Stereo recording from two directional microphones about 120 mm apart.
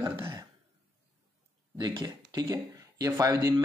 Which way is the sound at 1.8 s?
35° right (ahead or behind).